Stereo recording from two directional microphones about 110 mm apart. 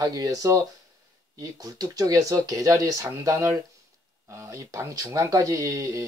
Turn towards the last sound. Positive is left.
turn(degrees=-30)  # may be behind; listen again after turning